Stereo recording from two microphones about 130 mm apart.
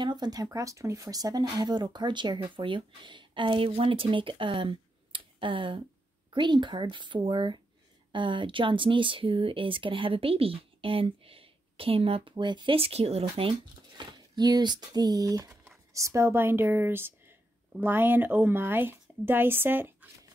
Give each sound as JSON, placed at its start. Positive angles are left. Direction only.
{"t": 0.0, "sound": "speech", "side_deg": -35}
{"t": 13.2, "sound": "speech", "side_deg": -40}